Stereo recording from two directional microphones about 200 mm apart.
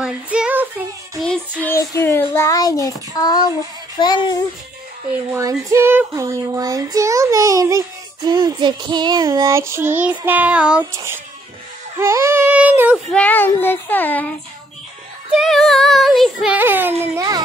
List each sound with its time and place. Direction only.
0.0 s child singing: 5° right (ahead or behind)
1.6 s a sound: 10° left (ahead or behind)
2.3 s child singing: 15° left (ahead or behind)
4.0 s a child's voice: 20° left (ahead or behind)
5.3 s child singing: 15° right (ahead or behind)
13.1 s child singing: 10° left (ahead or behind)
15.3 s child singing: centre (ahead or behind)